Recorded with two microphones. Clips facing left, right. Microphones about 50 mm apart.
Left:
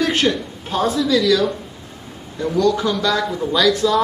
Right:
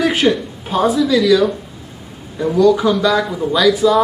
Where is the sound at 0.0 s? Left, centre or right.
Centre.